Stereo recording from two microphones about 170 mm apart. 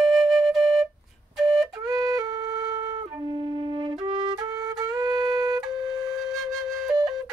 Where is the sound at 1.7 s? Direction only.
20° right (ahead or behind).